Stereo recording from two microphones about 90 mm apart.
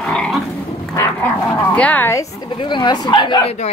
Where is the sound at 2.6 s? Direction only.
55° left (ahead or behind).